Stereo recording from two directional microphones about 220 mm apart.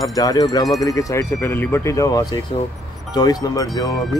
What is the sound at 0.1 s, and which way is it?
Speech, 15° left (ahead or behind).